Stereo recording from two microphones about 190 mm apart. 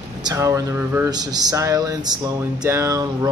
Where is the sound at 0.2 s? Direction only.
20° right (ahead or behind).